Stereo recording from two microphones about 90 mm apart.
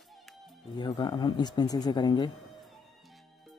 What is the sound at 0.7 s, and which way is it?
Speech, 55° left (ahead or behind).